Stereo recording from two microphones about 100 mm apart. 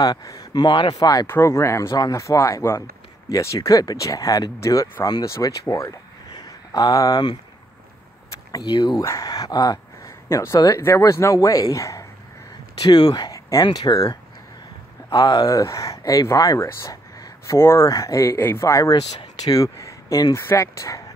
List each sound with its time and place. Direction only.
0.0 s speech: 40° left (ahead or behind)
1.2 s speech: 25° left (ahead or behind); by 7.3 s 40° left (ahead or behind)
8.5 s speech: 40° left (ahead or behind)
9.0 s speech: 35° left (ahead or behind)